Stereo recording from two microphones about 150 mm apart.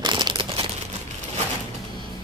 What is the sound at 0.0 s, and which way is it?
Crumpling, 30° right (ahead or behind).